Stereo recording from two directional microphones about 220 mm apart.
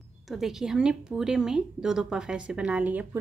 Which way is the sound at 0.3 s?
Centre (ahead or behind).